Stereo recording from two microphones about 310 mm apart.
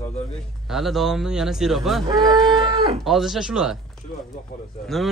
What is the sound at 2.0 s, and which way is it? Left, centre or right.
Livestock, centre.